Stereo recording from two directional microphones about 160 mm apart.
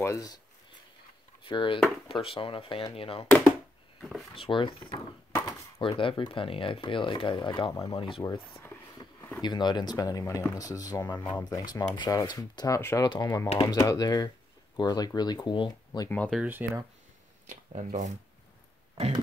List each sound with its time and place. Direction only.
0.0 s speech: 20° left (ahead or behind)
1.4 s speech: 30° left (ahead or behind)
3.3 s a sound: 5° left (ahead or behind)
4.0 s speech: centre (ahead or behind)
4.4 s speech: 30° left (ahead or behind)
8.5 s a sound: 15° left (ahead or behind)
9.4 s speech: 25° left (ahead or behind)
16.1 s speech: 10° left (ahead or behind)
16.3 s speech: 10° right (ahead or behind)
17.5 s speech: 50° right (ahead or behind)